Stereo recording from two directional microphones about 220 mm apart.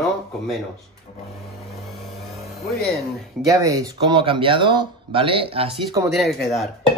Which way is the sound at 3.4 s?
15° right (ahead or behind).